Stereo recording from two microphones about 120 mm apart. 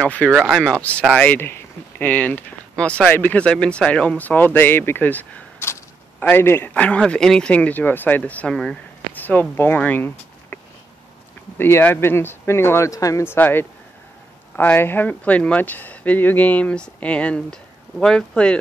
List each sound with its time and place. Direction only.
0.0 s speech: 10° left (ahead or behind)
0.3 s speech: 5° right (ahead or behind)
0.6 s speech: 5° left (ahead or behind)